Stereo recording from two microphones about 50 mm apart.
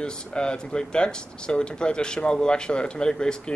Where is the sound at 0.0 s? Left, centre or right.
Centre.